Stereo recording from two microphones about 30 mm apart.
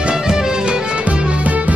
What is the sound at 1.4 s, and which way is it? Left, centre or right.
Music, right.